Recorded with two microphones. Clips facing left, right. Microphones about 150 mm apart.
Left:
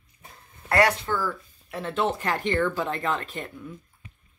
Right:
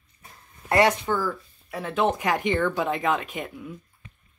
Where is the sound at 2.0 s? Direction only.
15° right (ahead or behind).